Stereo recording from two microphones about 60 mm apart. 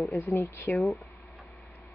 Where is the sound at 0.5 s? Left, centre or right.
Left.